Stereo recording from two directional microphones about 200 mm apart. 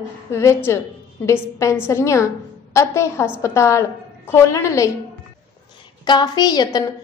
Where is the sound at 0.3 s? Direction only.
15° left (ahead or behind).